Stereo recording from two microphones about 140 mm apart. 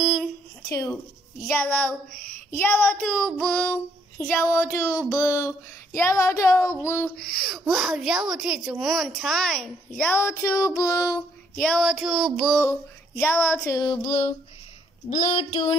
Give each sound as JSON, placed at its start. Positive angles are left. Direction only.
{"t": 0.0, "sound": "a sound", "side_deg": -5}
{"t": 0.7, "sound": "speech", "side_deg": 20}
{"t": 1.5, "sound": "child singing", "side_deg": 15}
{"t": 7.2, "sound": "speech", "side_deg": 0}
{"t": 10.0, "sound": "child singing", "side_deg": 20}
{"t": 11.6, "sound": "speech", "side_deg": 0}
{"t": 13.1, "sound": "child singing", "side_deg": 15}
{"t": 14.0, "sound": "female singing", "side_deg": 55}
{"t": 15.0, "sound": "child singing", "side_deg": 60}